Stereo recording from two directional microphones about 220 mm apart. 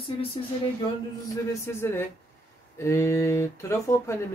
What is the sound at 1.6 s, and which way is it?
Speech, 10° left (ahead or behind).